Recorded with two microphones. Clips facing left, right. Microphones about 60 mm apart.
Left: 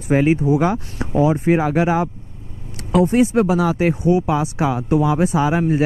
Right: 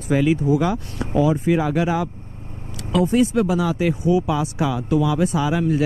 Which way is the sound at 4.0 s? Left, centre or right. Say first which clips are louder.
Left 2 dB; left.